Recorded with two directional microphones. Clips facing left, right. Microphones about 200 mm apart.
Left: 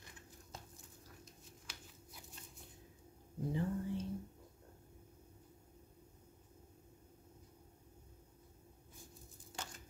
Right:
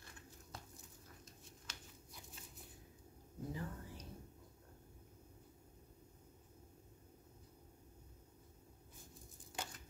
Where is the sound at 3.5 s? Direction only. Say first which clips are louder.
Left 10 dB; 25° left (ahead or behind).